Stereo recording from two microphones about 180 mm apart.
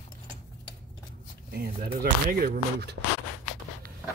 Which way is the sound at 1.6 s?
60° right (ahead or behind).